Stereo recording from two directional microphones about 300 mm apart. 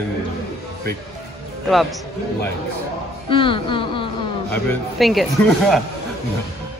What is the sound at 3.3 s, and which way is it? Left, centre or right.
Speech, centre.